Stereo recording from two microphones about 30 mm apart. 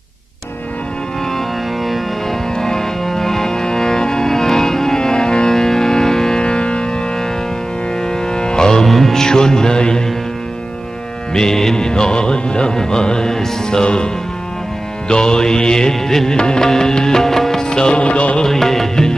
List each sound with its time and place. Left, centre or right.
2.5 s music: left
5.5 s music: centre
6.4 s music: left
8.0 s music: left
8.8 s music: centre
9.1 s music: left
11.3 s music: centre
16.3 s music: left
17.9 s music: left
18.4 s music: centre